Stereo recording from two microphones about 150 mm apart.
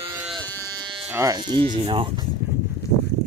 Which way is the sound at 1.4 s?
35° right (ahead or behind).